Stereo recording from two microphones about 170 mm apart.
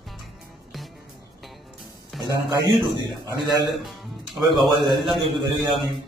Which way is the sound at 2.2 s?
25° right (ahead or behind).